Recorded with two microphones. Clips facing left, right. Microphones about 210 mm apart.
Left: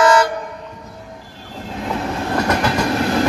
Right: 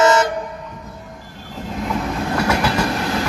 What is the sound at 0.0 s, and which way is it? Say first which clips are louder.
Train: left 1 dB; 25° right (ahead or behind).